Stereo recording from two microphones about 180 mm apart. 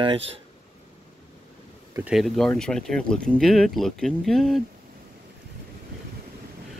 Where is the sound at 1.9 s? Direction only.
5° right (ahead or behind).